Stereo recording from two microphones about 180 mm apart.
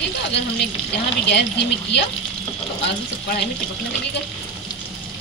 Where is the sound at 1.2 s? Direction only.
70° left (ahead or behind).